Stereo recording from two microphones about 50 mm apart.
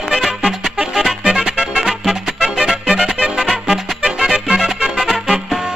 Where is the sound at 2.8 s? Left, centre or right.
Centre.